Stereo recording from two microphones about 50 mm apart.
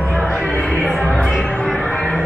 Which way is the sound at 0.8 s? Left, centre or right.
Centre.